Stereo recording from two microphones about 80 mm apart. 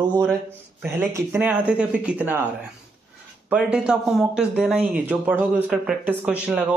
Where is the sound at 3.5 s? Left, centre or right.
Centre.